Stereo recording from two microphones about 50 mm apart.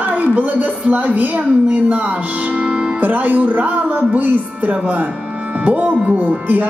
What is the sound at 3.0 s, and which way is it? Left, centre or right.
Speech, right.